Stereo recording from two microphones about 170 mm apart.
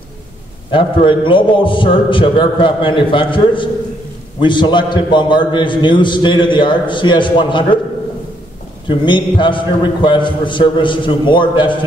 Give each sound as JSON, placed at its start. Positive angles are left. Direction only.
{"t": 0.7, "sound": "a man's voice", "side_deg": 30}
{"t": 8.8, "sound": "a man's voice", "side_deg": 30}